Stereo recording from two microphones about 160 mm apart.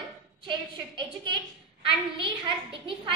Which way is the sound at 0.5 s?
30° right (ahead or behind).